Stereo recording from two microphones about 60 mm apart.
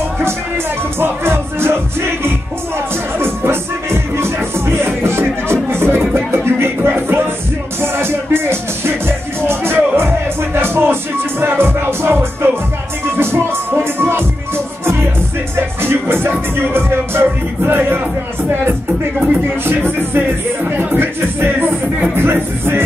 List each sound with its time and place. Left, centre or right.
0.9 s music: right
15.5 s music: right
20.2 s music: right